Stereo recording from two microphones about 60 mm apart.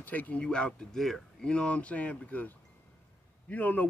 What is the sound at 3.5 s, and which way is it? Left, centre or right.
Speech, left.